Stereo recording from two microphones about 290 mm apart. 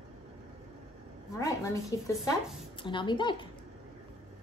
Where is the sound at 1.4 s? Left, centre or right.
Centre.